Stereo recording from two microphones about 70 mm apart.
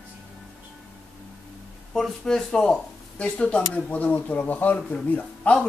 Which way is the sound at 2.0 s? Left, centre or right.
Centre.